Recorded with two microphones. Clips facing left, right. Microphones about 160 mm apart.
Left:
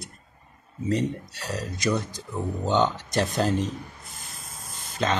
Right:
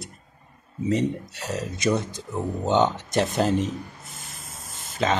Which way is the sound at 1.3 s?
15° right (ahead or behind).